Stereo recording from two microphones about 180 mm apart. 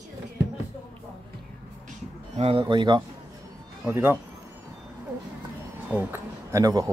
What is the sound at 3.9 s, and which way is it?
Speech, 15° right (ahead or behind).